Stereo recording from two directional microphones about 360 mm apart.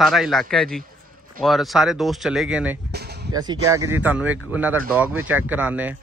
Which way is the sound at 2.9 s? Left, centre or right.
Right.